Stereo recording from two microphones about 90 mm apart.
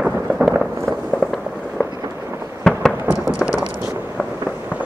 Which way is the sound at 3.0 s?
35° left (ahead or behind).